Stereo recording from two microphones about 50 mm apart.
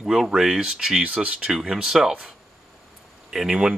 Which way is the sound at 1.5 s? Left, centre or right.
Centre.